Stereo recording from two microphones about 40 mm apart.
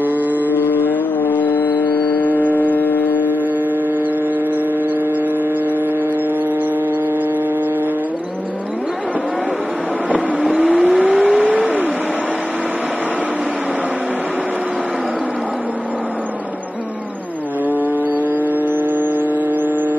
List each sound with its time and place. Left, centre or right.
0.0 s vehicle: right
0.6 s a sound: left
10.0 s vehicle: right
17.6 s vehicle: right